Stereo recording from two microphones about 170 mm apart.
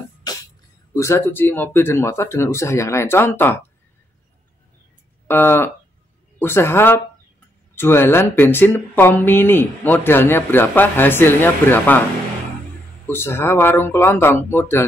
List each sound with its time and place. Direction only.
0.3 s music: 25° left (ahead or behind)
0.9 s speech: 15° left (ahead or behind)
5.3 s speech: 15° left (ahead or behind)
13.0 s speech: 15° left (ahead or behind)